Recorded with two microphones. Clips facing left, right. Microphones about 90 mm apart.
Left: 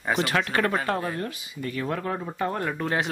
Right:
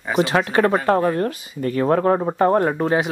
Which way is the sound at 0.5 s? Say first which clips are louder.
Right 8 dB; 25° right (ahead or behind).